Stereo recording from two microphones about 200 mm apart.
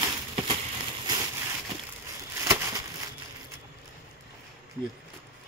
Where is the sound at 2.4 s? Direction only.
15° right (ahead or behind).